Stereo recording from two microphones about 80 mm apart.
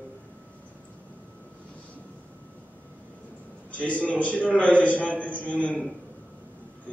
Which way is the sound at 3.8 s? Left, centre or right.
Centre.